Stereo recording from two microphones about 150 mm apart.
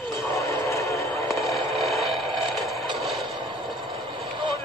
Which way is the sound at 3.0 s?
Centre (ahead or behind).